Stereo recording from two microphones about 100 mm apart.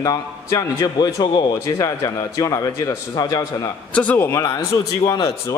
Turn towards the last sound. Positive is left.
turn(degrees=35)  # may be behind; listen again after turning